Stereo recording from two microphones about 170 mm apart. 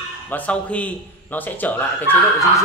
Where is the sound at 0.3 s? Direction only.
10° left (ahead or behind).